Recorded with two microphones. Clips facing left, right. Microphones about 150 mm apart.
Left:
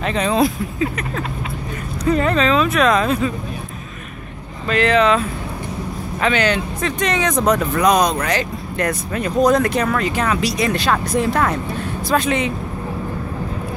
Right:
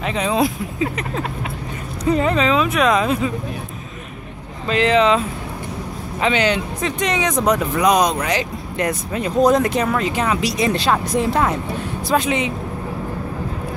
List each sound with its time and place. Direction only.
0.0 s speech: 10° right (ahead or behind)
2.0 s speech: 20° right (ahead or behind)
4.6 s speech: 20° right (ahead or behind)
6.2 s speech: 20° right (ahead or behind)